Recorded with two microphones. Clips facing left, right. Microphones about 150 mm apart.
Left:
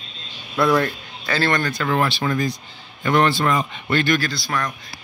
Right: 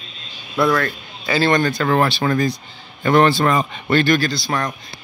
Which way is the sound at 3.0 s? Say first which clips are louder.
Right 4 dB; 35° right (ahead or behind).